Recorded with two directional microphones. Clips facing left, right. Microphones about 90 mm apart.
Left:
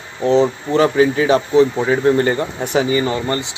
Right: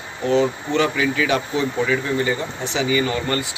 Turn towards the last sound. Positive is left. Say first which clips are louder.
# left 3 dB
turn(degrees=20)  # may be behind; listen again after turning